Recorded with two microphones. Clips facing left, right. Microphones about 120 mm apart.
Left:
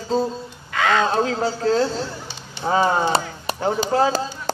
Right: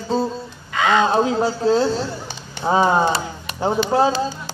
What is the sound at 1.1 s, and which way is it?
A man's voice, 20° right (ahead or behind).